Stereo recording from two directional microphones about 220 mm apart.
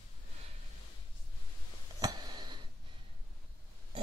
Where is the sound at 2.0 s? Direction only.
20° right (ahead or behind).